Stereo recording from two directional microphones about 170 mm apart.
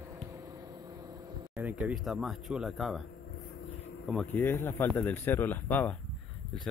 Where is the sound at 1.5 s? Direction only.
5° right (ahead or behind).